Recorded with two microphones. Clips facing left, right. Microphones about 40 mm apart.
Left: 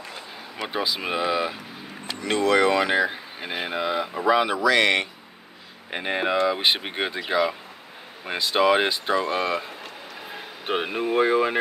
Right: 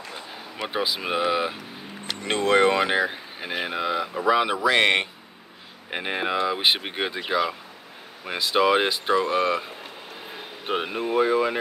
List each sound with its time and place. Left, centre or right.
0.6 s speech: centre
2.2 s speech: right
2.8 s speech: centre
3.1 s speech: centre
4.6 s speech: right
5.9 s speech: centre
8.5 s speech: centre
10.7 s speech: centre
11.1 s speech: left